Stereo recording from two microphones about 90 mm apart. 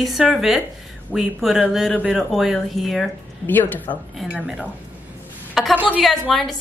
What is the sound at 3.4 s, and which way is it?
Speech, 20° left (ahead or behind).